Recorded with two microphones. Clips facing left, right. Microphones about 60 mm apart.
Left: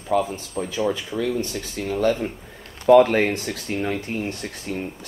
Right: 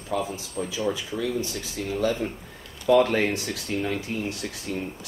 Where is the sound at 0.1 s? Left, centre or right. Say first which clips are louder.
Left 6 dB; left.